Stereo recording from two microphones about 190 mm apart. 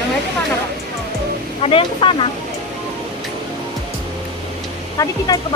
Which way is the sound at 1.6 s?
30° left (ahead or behind).